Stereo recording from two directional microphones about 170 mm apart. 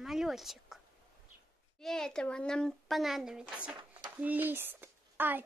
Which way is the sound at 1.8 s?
Centre (ahead or behind).